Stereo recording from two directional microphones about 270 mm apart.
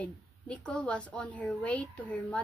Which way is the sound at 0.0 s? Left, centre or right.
Centre.